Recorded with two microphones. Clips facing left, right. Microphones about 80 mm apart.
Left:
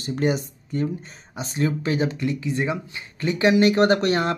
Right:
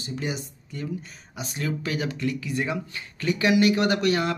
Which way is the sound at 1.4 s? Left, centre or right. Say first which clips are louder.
Left 5 dB; left.